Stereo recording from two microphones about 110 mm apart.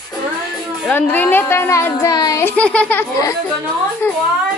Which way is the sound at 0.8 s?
15° left (ahead or behind).